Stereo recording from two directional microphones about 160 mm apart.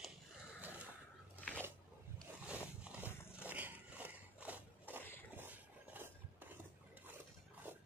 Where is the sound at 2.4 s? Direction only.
10° right (ahead or behind).